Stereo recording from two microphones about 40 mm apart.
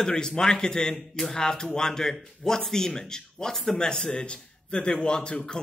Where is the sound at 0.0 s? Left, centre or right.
Centre.